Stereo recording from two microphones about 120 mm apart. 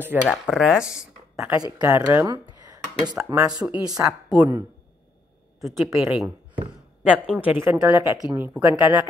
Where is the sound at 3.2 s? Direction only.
15° right (ahead or behind).